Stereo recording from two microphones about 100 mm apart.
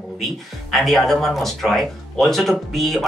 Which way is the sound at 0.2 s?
Centre (ahead or behind).